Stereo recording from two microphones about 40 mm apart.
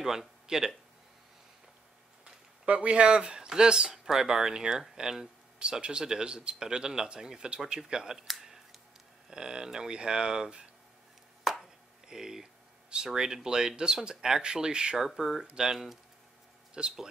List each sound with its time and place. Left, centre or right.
0.5 s speech: centre
2.6 s speech: right; by 5.3 s centre
5.6 s speech: right
8.3 s clicking: centre
9.3 s speech: centre
11.6 s a sound: centre
12.9 s speech: centre
15.0 s speech: centre